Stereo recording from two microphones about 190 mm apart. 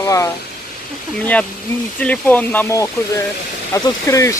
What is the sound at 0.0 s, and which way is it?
Speech, 15° left (ahead or behind).